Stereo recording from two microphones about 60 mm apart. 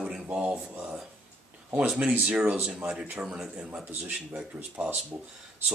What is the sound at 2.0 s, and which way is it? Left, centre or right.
Speech, right.